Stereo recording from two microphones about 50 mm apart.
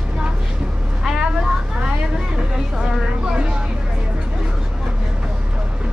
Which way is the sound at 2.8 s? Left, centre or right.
Centre.